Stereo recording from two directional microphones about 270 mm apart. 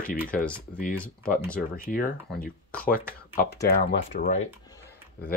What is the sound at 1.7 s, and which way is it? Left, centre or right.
Speech, left.